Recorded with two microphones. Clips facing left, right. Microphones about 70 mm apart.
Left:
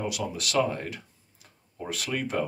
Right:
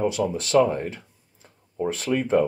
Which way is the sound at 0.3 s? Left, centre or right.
Right.